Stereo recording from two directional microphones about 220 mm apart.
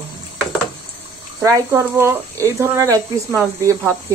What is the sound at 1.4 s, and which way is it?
Speech, 10° right (ahead or behind).